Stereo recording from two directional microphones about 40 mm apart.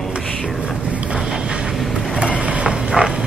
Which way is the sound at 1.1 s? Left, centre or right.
Centre.